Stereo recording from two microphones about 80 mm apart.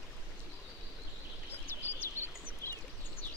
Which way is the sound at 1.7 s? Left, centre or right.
Left.